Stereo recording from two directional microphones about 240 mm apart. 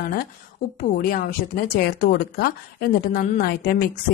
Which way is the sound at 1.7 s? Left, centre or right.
Left.